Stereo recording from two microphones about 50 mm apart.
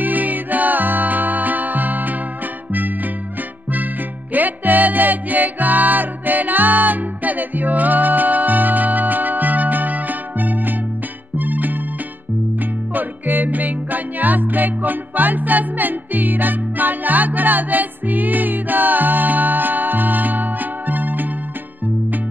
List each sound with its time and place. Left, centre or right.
0.0 s music: right